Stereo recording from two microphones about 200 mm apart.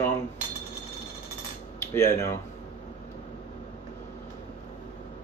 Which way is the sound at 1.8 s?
15° left (ahead or behind).